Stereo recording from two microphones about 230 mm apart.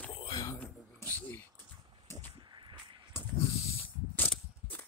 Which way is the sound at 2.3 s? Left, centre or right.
Centre.